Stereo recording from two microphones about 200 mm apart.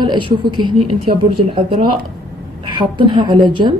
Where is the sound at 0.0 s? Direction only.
25° right (ahead or behind).